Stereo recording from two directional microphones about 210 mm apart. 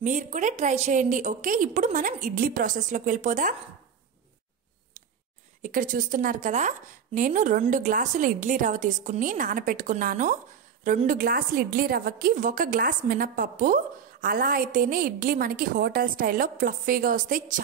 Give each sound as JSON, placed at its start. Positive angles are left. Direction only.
{"t": 0.0, "sound": "a woman's voice", "side_deg": -35}
{"t": 5.6, "sound": "a woman's voice", "side_deg": -40}